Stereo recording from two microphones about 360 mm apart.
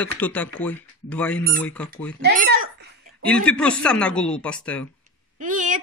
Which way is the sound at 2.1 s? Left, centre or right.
Right.